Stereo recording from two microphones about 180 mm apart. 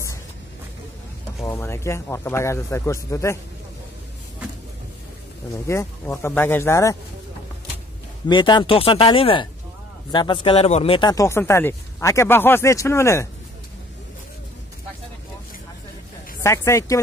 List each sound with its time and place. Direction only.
1.4 s speech: 15° left (ahead or behind)
5.7 s speech: 15° left (ahead or behind)
8.3 s speech: 25° left (ahead or behind)
16.4 s speech: 15° left (ahead or behind)